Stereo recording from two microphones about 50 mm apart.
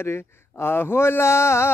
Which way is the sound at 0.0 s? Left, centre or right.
Left.